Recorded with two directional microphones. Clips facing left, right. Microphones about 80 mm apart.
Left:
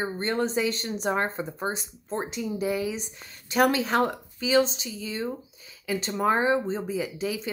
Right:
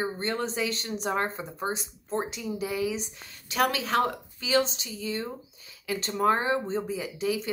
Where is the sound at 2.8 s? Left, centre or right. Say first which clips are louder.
Even; left.